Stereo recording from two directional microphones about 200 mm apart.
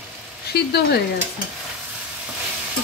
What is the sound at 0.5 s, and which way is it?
Hair dryer, 55° left (ahead or behind).